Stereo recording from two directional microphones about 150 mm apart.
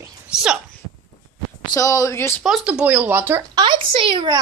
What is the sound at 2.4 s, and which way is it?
Speech, 5° right (ahead or behind).